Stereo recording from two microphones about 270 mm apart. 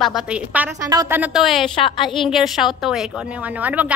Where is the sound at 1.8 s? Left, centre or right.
Centre.